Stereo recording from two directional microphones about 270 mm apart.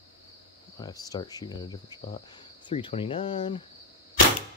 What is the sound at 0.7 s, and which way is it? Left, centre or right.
Speech, centre.